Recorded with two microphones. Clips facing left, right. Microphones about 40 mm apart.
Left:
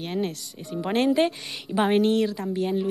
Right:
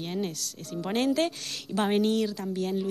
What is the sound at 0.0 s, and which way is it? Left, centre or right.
A woman's voice, centre.